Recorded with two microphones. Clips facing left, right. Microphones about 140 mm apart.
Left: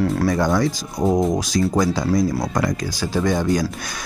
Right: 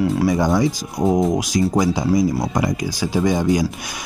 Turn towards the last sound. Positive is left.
turn(degrees=-10)  # may be behind; listen again after turning